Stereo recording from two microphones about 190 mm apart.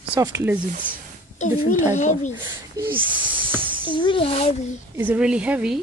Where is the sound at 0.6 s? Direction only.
45° right (ahead or behind).